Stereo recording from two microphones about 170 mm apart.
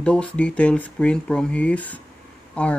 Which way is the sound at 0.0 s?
5° left (ahead or behind).